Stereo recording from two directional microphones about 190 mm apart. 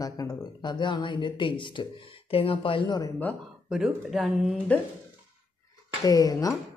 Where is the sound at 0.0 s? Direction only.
20° left (ahead or behind).